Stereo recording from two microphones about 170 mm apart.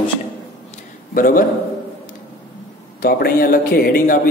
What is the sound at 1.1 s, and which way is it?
Speech, 55° left (ahead or behind).